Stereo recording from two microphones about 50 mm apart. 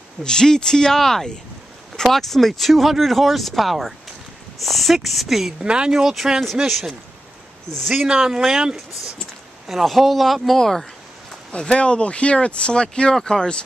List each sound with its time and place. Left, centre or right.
0.2 s speech: centre
5.6 s speech: centre
8.1 s speech: centre
11.5 s speech: left